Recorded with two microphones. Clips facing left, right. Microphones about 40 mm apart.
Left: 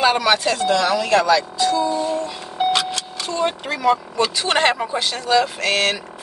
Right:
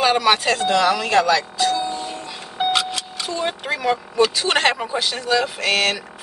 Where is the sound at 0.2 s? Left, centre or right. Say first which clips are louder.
Even; right.